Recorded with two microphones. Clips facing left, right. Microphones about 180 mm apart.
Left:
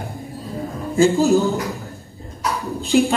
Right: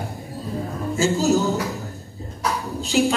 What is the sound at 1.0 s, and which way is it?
Speech, 55° left (ahead or behind).